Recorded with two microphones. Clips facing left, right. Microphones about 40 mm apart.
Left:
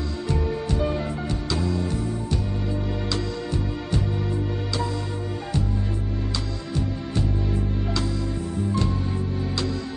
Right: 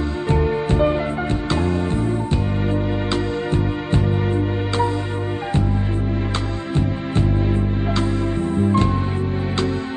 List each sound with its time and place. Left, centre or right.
0.3 s music: right
6.7 s music: right